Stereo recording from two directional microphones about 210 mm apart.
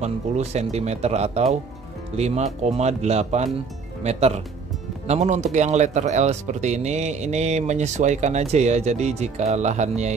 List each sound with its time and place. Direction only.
0.0 s speech: 30° right (ahead or behind)